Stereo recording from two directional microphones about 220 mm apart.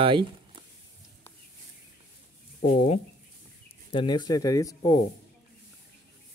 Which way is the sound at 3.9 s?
20° left (ahead or behind).